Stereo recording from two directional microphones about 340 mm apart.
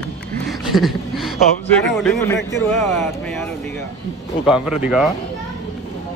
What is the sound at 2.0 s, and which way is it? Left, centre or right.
Speech, centre.